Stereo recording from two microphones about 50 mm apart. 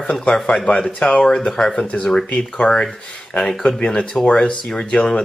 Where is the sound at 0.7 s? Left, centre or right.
Centre.